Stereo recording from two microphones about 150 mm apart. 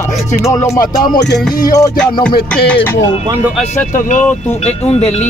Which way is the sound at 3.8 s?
60° left (ahead or behind).